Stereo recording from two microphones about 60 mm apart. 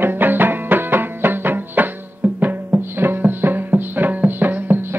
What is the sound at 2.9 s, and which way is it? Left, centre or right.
Music, right.